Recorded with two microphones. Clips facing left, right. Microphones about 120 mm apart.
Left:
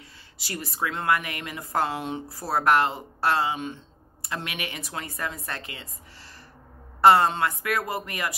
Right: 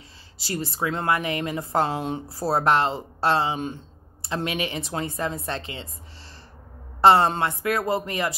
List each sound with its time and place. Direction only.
0.4 s speech: 30° right (ahead or behind)
7.0 s speech: 30° right (ahead or behind)